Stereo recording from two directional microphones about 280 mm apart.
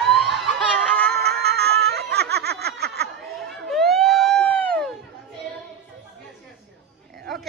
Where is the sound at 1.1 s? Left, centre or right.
Right.